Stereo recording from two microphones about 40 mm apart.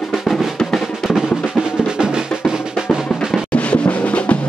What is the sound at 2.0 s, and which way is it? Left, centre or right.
Drum, centre.